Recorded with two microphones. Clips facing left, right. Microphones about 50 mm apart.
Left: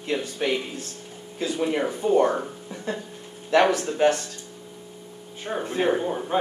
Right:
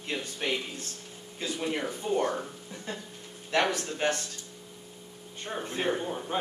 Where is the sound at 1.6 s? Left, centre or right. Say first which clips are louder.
Left 8 dB; left.